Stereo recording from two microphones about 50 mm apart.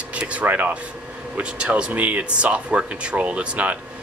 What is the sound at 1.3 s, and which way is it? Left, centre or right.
Speech, right.